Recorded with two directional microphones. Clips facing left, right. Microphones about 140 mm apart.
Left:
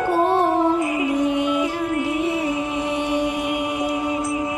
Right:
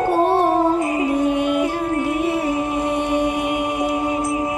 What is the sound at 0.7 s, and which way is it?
Music, 35° right (ahead or behind).